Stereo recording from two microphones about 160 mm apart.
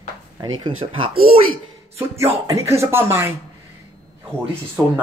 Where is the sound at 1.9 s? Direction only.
15° right (ahead or behind).